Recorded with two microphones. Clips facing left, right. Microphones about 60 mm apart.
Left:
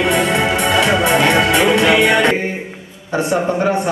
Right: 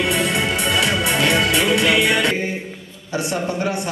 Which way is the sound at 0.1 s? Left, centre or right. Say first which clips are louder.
Left 5 dB; left.